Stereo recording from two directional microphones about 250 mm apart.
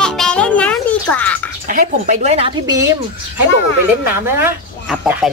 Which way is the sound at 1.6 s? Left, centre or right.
Right.